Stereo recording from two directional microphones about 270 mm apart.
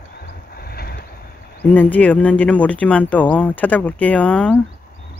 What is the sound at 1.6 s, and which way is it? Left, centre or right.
Speech, centre.